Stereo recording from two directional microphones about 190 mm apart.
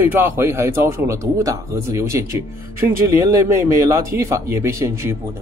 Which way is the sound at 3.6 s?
15° right (ahead or behind).